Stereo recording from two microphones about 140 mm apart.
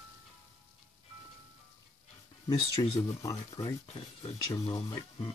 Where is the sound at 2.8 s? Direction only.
30° left (ahead or behind).